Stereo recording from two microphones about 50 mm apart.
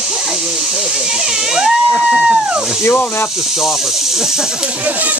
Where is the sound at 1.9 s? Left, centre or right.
Centre.